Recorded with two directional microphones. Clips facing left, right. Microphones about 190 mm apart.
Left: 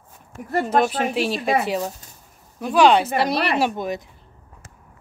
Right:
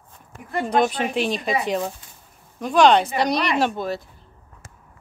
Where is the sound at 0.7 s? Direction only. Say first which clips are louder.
Right 1 dB; 5° left (ahead or behind).